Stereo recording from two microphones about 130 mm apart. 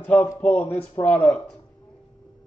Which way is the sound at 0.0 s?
5° left (ahead or behind).